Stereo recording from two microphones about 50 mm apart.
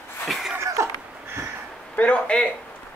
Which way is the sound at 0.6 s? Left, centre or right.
Right.